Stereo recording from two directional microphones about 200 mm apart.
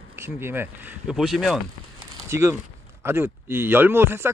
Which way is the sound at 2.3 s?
15° right (ahead or behind).